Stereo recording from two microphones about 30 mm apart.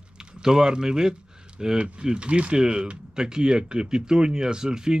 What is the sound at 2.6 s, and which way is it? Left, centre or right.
Speech, right.